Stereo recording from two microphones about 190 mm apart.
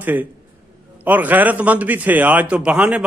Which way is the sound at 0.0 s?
10° right (ahead or behind).